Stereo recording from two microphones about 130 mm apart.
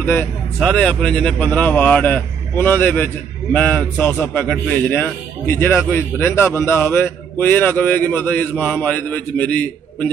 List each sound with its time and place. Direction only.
0.0 s a man's voice: 15° left (ahead or behind)